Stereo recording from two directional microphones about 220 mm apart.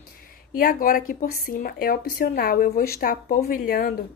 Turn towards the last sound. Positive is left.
turn(degrees=40)  # may be behind; listen again after turning